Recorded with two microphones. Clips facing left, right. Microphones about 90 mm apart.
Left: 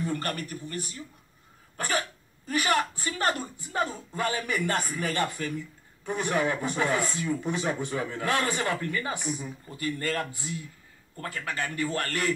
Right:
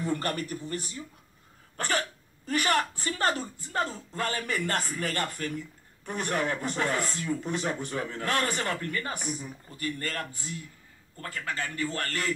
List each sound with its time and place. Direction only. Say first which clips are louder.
0.0 s speech: right 1 dB; 25° right (ahead or behind)
2.6 s a woman's voice: left 1 dB; 25° left (ahead or behind)
3.0 s speech: right 1 dB; 35° right (ahead or behind)
3.3 s speech: left 1 dB; 15° left (ahead or behind)